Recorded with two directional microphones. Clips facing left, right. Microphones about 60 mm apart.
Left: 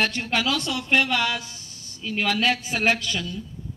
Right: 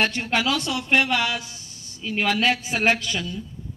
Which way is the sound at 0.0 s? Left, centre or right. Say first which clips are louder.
Right 1 dB; right.